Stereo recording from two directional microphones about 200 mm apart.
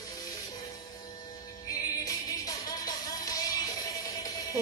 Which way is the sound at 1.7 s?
15° left (ahead or behind).